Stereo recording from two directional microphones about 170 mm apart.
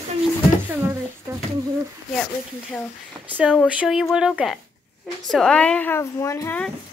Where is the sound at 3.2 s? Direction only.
10° right (ahead or behind).